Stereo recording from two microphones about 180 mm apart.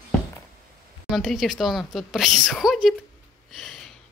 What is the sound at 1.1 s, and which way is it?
A woman's voice, centre (ahead or behind).